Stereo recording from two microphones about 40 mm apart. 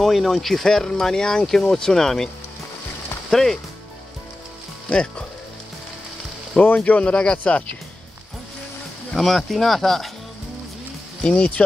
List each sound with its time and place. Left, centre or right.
0.0 s speech: centre
6.5 s speech: left
9.1 s speech: centre
11.2 s speech: left